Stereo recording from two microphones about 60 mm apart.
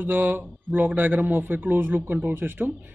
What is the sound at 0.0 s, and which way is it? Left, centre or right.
Speech, right.